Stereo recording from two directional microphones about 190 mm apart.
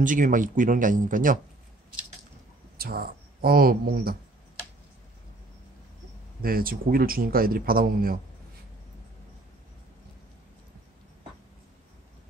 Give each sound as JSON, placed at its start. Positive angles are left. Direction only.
{"t": 0.0, "sound": "speech", "side_deg": -45}
{"t": 2.8, "sound": "speech", "side_deg": -50}
{"t": 6.4, "sound": "speech", "side_deg": -50}